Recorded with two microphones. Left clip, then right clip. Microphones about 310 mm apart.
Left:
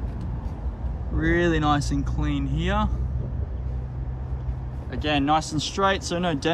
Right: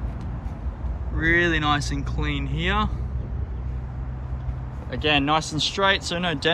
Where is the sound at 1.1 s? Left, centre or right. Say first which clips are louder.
Right 2 dB; centre.